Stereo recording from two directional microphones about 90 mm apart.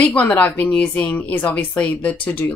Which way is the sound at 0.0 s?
15° left (ahead or behind).